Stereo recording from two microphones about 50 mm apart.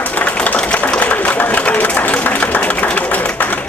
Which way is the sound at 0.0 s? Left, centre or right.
Left.